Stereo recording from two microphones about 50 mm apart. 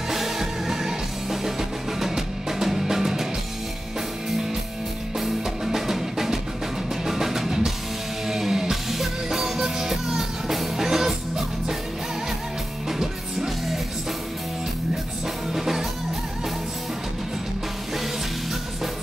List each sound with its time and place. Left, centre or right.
0.1 s music: centre
5.2 s music: centre
12.8 s music: centre
15.5 s music: centre